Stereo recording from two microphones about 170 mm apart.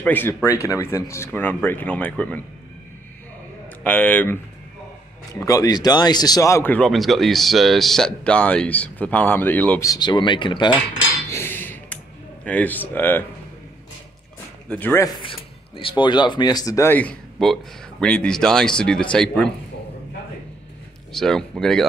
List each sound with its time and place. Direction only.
0.0 s speech: 10° left (ahead or behind)
3.8 s speech: 10° left (ahead or behind)
9.8 s cutlery: 25° left (ahead or behind)
11.3 s a sound: 10° left (ahead or behind)
12.4 s speech: 10° left (ahead or behind)
14.7 s speech: 10° left (ahead or behind)
15.2 s speech: 30° left (ahead or behind); by 19.5 s 5° left (ahead or behind)
21.1 s speech: 5° left (ahead or behind)